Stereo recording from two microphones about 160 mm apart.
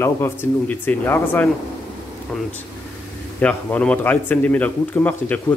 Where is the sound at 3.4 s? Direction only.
10° left (ahead or behind).